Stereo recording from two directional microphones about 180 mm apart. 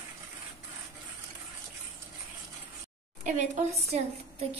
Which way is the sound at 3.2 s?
45° right (ahead or behind).